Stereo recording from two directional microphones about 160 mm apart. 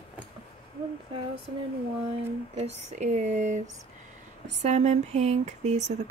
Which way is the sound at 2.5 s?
45° right (ahead or behind).